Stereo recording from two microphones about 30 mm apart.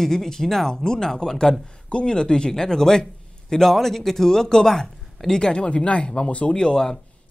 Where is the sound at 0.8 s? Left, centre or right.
Left.